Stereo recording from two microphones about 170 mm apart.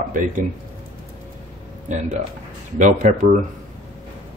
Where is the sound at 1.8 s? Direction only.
45° right (ahead or behind).